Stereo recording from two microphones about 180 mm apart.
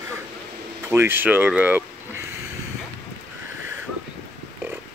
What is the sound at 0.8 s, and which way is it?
Speech, 15° right (ahead or behind).